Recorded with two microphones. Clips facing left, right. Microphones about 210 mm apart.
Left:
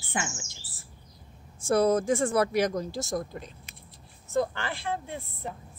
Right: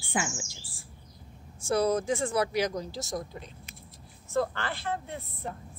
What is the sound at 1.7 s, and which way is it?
Speech, 50° left (ahead or behind).